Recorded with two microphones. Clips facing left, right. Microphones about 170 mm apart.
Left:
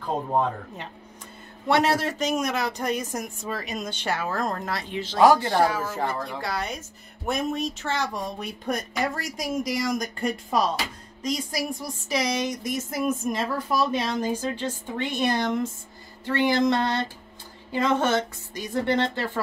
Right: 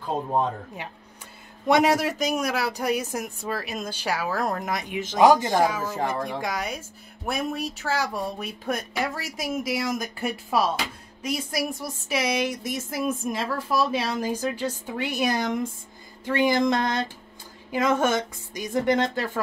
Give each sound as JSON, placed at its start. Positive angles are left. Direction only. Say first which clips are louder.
{"t": 1.7, "sound": "speech", "louder": "right 2 dB", "side_deg": -15}